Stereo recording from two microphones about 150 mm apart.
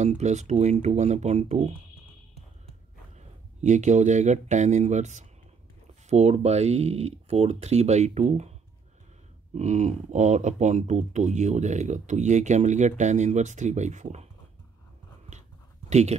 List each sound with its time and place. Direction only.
0.0 s speech: 50° right (ahead or behind)
3.2 s speech: 55° right (ahead or behind)
9.6 s speech: 50° right (ahead or behind)
15.9 s speech: 50° right (ahead or behind)